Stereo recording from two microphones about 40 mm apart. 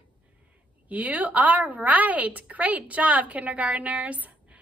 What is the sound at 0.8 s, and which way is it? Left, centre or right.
A woman's voice, right.